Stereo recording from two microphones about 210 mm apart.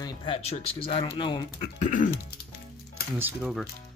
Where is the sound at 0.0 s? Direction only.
20° left (ahead or behind).